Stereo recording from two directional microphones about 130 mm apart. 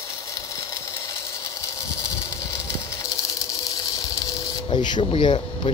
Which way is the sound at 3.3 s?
30° left (ahead or behind).